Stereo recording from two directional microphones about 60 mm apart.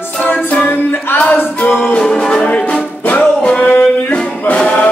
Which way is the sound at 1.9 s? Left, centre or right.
Centre.